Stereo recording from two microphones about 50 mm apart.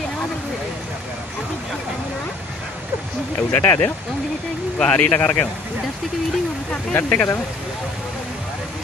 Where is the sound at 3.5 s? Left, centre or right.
Left.